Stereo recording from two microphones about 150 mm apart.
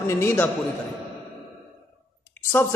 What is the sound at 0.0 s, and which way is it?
Speech, 20° left (ahead or behind).